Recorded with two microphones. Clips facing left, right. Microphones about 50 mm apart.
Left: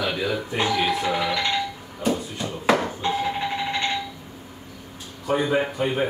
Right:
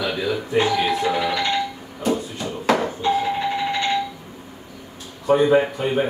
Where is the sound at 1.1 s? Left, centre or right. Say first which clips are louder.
Right 2 dB; centre.